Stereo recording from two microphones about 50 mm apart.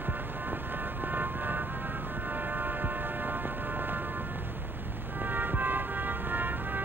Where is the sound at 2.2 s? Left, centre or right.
Right.